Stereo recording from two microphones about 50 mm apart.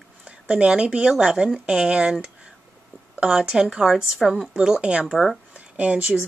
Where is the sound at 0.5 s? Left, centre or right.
Centre.